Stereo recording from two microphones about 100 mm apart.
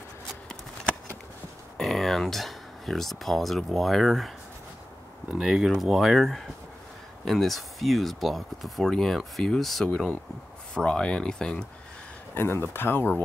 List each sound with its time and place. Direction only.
1.8 s speech: centre (ahead or behind)
5.3 s speech: 5° right (ahead or behind)
12.4 s speech: 20° left (ahead or behind)